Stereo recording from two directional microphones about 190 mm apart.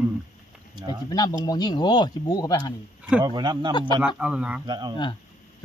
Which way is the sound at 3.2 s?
20° right (ahead or behind).